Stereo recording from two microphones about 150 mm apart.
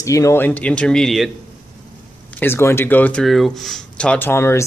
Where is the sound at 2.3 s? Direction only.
15° left (ahead or behind).